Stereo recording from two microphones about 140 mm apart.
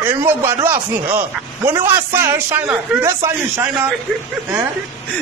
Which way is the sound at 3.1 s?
25° right (ahead or behind).